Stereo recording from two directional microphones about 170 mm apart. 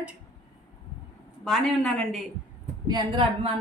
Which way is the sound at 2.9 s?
30° right (ahead or behind).